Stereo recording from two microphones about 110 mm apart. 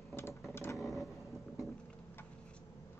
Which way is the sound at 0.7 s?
Centre (ahead or behind).